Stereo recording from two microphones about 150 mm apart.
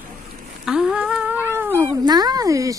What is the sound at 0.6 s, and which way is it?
Cat, 5° right (ahead or behind).